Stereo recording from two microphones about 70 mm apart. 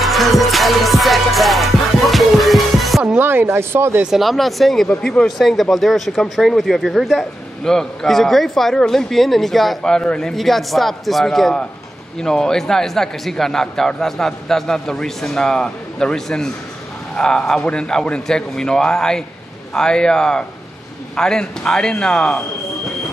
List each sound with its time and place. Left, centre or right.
0.0 s music: centre
3.2 s speech: right
4.0 s speech: centre